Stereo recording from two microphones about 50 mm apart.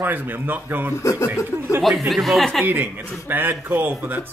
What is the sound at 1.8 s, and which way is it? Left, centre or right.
Speech, centre.